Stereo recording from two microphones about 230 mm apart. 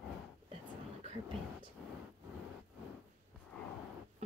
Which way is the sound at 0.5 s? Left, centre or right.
Right.